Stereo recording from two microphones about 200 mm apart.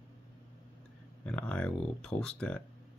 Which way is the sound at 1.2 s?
5° left (ahead or behind).